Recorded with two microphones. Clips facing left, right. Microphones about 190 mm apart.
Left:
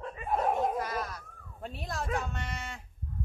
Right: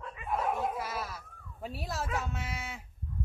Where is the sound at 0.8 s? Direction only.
5° right (ahead or behind).